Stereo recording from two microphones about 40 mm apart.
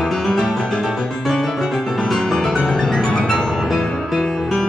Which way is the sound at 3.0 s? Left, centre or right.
Centre.